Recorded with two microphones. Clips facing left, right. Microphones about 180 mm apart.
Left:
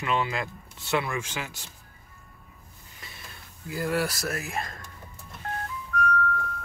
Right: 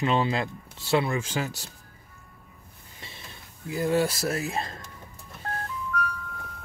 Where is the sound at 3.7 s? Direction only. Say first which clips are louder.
Right 3 dB; 20° right (ahead or behind).